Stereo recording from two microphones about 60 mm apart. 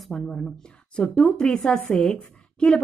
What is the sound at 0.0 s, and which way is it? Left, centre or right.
Speech, centre.